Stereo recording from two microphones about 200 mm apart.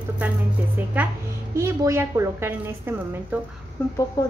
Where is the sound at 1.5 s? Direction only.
15° right (ahead or behind).